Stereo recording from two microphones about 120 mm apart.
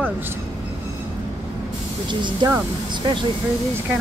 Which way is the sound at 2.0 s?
40° right (ahead or behind).